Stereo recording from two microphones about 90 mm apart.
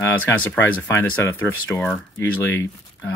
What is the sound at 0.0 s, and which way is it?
Speech, 20° left (ahead or behind).